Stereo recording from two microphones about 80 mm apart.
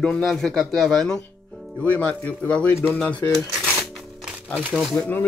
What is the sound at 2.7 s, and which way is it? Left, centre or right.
Speech, left.